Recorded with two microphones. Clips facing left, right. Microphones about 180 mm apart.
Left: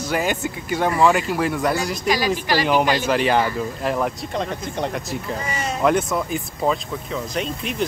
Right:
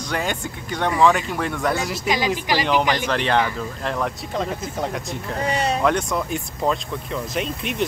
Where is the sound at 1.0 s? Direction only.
5° left (ahead or behind).